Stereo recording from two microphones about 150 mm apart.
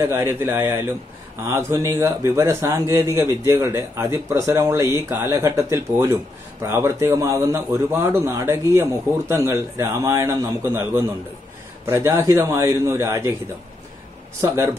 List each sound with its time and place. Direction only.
0.0 s a man's voice: 15° right (ahead or behind)
14.4 s speech: 20° right (ahead or behind)